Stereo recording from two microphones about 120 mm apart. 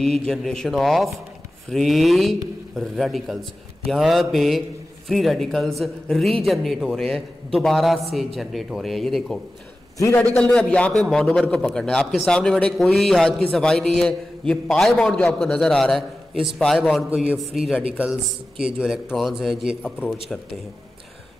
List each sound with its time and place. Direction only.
0.2 s a man's voice: 5° left (ahead or behind)
9.9 s a man's voice: 25° left (ahead or behind)
10.2 s a man's voice: 5° left (ahead or behind); by 18.1 s 10° right (ahead or behind)
19.1 s a man's voice: centre (ahead or behind)